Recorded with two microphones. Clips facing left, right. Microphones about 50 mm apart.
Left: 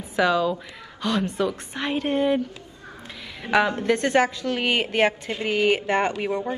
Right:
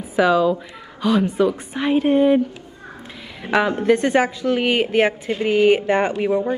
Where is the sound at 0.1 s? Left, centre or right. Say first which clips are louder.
Right 5 dB; centre.